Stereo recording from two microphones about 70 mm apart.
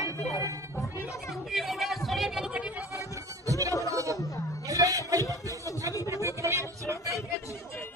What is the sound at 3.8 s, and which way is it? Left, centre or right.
Chatter, right.